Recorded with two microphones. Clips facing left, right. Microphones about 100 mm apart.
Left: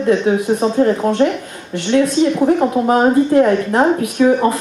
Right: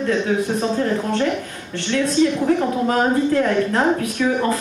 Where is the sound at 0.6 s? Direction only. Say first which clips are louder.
Left 6 dB; 25° left (ahead or behind).